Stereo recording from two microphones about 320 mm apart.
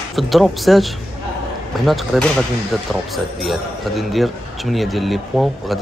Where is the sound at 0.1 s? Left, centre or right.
Centre.